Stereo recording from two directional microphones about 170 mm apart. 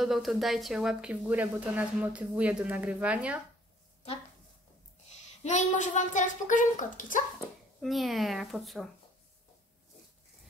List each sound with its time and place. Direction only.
0.0 s speech: centre (ahead or behind)
5.1 s a child's voice: 45° left (ahead or behind)
7.8 s speech: centre (ahead or behind)